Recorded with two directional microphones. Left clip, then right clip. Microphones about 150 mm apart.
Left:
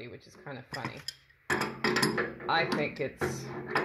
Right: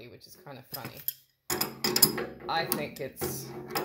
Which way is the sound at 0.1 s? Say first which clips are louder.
Left 3 dB; centre (ahead or behind).